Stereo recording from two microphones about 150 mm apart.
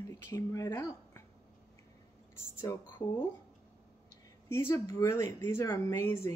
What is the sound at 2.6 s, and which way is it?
Speech, 15° left (ahead or behind).